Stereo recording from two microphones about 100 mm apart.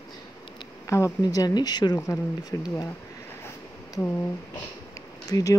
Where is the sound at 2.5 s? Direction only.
35° left (ahead or behind).